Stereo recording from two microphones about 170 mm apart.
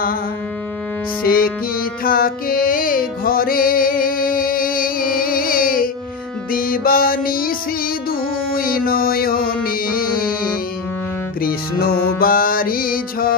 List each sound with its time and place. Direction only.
1.2 s music: 60° left (ahead or behind)